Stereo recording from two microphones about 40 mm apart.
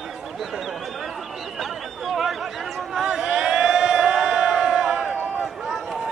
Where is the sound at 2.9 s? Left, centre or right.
Centre.